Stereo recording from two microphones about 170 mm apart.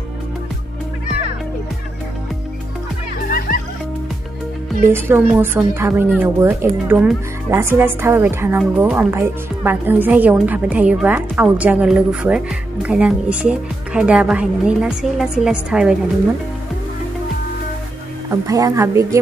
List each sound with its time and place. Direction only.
3.3 s music: 55° left (ahead or behind)
4.9 s a woman's voice: 10° right (ahead or behind)
18.3 s speech: 20° right (ahead or behind)